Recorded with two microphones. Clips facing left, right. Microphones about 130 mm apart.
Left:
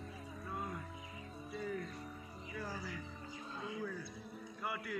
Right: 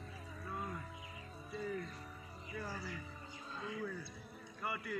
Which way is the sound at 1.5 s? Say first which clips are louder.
Even; centre (ahead or behind).